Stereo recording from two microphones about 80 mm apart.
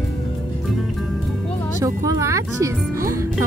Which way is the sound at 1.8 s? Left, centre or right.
Right.